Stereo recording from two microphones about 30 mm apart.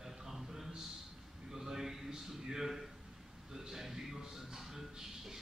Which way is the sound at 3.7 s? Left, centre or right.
Centre.